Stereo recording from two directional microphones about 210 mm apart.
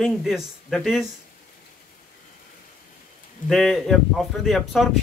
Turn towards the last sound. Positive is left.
turn(degrees=0)  # may be behind; listen again after turning